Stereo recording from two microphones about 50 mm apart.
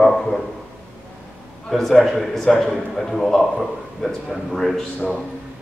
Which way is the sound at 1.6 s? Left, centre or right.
Centre.